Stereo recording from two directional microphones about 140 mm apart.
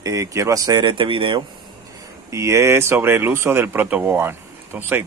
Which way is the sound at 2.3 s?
20° right (ahead or behind).